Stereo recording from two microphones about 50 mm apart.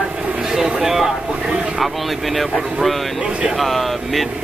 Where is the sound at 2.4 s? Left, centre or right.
Centre.